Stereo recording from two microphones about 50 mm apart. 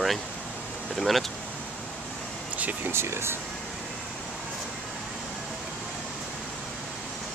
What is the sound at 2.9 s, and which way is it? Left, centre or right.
Speech, right.